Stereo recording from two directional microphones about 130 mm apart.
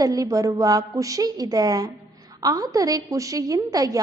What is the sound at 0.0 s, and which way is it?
A woman's voice, 25° right (ahead or behind).